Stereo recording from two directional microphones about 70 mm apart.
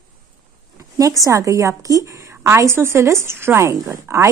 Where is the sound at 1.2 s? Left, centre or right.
Right.